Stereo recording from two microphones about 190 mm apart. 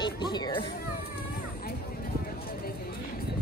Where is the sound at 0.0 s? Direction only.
25° left (ahead or behind).